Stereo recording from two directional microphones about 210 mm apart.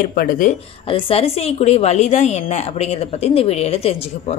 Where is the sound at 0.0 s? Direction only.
40° left (ahead or behind).